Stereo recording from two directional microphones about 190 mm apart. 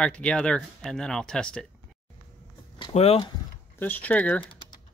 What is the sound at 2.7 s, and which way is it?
Speech, 30° left (ahead or behind).